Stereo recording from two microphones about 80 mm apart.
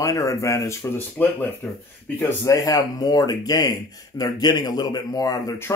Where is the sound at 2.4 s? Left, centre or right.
Left.